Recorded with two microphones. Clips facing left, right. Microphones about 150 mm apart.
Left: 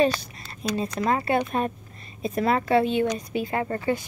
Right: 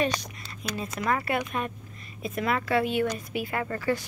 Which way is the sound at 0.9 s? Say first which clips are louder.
Left 3 dB; 25° left (ahead or behind).